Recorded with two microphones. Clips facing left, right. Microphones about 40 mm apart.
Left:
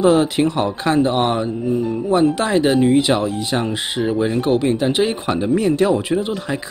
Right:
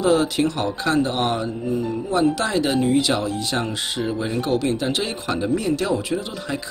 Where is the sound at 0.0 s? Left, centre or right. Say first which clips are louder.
Left 4 dB; left.